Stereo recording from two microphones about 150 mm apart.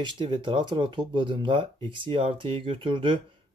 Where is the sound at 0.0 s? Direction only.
30° right (ahead or behind).